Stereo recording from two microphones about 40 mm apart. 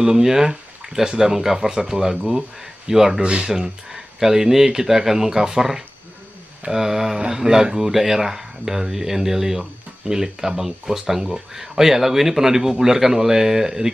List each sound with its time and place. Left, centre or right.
0.0 s speech: centre
3.2 s speech: right
3.5 s speech: centre